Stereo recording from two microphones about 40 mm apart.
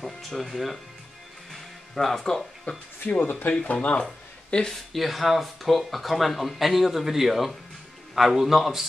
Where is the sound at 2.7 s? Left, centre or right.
Left.